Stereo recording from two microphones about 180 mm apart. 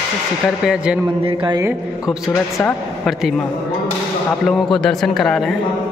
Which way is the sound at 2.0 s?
5° right (ahead or behind).